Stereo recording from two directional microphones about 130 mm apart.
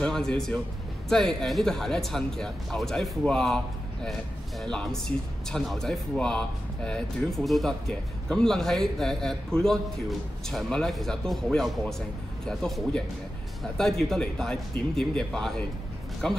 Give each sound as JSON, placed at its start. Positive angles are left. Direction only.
{"t": 0.0, "sound": "speech", "side_deg": 5}